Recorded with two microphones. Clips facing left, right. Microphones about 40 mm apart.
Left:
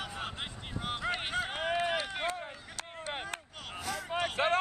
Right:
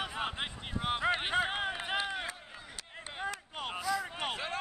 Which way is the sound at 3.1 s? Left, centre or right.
Left.